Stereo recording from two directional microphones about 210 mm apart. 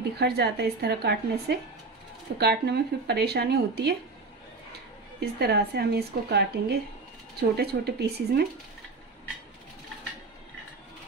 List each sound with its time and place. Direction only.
0.2 s speech: 50° right (ahead or behind)
5.2 s speech: 50° right (ahead or behind)